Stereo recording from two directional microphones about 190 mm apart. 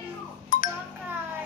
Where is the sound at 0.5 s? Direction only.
40° left (ahead or behind).